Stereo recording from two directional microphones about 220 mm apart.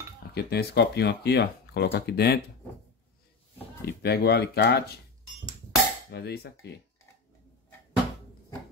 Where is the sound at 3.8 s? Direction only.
45° left (ahead or behind).